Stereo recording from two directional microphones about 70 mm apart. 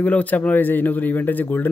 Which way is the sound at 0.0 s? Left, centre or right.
Left.